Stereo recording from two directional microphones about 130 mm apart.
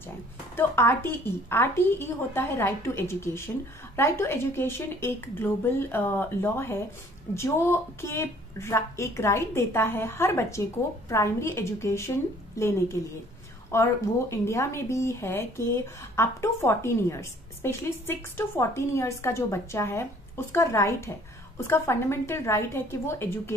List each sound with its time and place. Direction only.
0.6 s a woman's voice: 15° left (ahead or behind)